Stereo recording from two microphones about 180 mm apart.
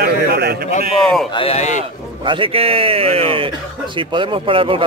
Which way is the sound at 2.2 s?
30° right (ahead or behind).